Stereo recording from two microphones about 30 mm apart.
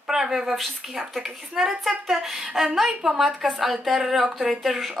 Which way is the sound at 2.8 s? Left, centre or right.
Centre.